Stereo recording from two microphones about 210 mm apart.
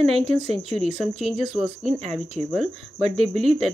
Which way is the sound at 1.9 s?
30° right (ahead or behind).